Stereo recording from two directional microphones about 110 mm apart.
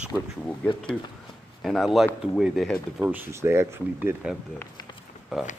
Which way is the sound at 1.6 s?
Centre (ahead or behind).